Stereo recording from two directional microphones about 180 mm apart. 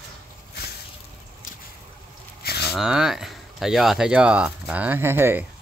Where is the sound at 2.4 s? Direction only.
60° left (ahead or behind).